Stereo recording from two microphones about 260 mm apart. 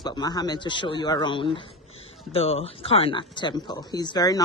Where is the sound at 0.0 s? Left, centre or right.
Centre.